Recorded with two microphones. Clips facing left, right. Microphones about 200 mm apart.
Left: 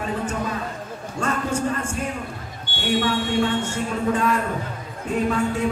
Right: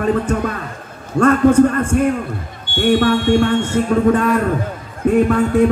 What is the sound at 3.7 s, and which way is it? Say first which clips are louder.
Speech: right 9 dB; 55° right (ahead or behind).